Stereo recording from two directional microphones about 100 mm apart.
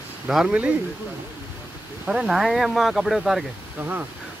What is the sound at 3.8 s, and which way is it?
Speech, 20° right (ahead or behind).